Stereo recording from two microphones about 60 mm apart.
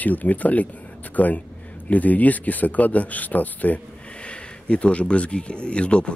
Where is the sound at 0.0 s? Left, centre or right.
Left.